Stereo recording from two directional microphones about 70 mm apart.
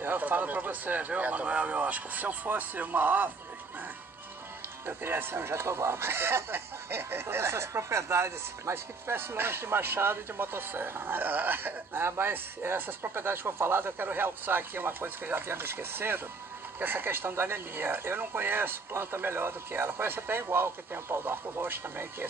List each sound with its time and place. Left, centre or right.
0.0 s speech: right
4.8 s speech: right